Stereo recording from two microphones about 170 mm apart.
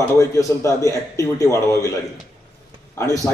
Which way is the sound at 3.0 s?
20° left (ahead or behind).